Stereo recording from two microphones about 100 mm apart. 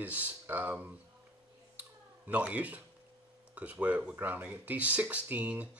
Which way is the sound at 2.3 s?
15° right (ahead or behind).